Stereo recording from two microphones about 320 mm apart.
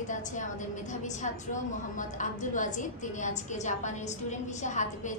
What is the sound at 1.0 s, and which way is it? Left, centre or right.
A woman's voice, left.